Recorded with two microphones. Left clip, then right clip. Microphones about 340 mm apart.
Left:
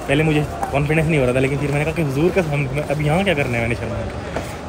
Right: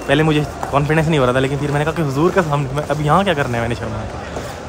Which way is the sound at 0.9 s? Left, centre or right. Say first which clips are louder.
Right 2 dB; centre.